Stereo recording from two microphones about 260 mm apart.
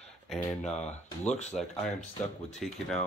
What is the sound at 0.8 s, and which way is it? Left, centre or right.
Speech, left.